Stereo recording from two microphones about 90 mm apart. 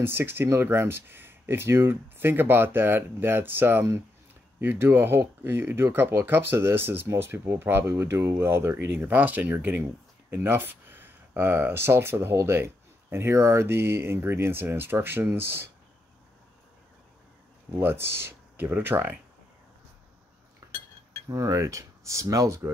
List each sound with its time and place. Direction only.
0.0 s speech: 25° right (ahead or behind)
17.7 s speech: 25° right (ahead or behind)
20.6 s cutlery: 35° right (ahead or behind)
21.3 s speech: 35° right (ahead or behind)